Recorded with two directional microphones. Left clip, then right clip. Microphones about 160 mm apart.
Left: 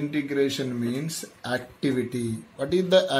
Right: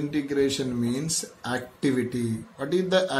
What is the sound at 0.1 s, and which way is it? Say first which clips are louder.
A man's voice: right 1 dB; 30° left (ahead or behind).